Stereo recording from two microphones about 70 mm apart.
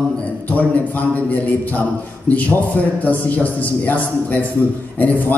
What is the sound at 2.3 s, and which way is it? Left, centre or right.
A man's voice, left.